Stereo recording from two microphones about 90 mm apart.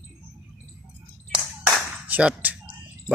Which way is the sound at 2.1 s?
15° right (ahead or behind).